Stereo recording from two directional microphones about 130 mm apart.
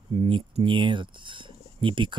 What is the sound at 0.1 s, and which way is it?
Speech, 40° right (ahead or behind).